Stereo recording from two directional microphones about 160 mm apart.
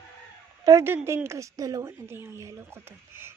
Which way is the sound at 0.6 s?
15° right (ahead or behind).